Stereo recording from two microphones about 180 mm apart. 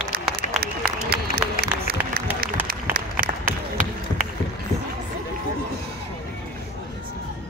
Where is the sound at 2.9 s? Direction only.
50° right (ahead or behind).